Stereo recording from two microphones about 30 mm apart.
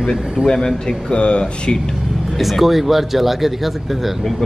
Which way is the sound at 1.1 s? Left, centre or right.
Left.